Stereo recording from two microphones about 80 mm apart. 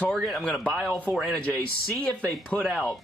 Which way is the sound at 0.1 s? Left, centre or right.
Centre.